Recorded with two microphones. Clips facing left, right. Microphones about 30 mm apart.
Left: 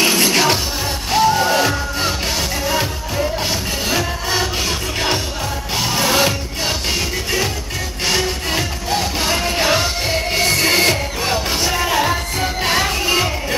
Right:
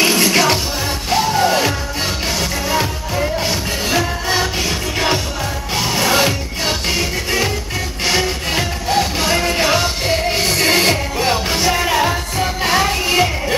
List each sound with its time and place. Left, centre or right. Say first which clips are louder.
0.0 s music: right 1 dB; centre
3.4 s music: right 1 dB; centre